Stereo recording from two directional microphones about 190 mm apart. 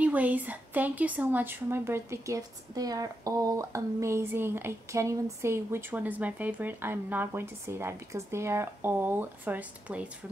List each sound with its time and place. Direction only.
0.0 s a woman's voice: 10° right (ahead or behind)